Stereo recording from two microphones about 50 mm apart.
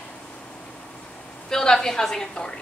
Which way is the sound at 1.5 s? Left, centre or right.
Centre.